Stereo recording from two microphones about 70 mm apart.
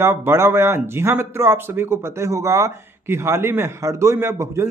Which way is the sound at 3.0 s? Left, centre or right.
Right.